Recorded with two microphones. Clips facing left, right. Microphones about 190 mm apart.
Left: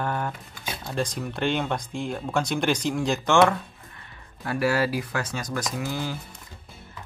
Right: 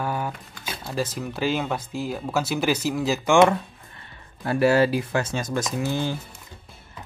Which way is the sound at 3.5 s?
30° right (ahead or behind).